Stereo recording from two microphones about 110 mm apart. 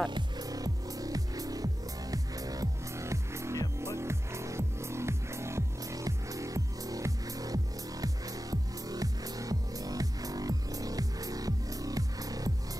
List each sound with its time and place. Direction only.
0.1 s music: 35° right (ahead or behind)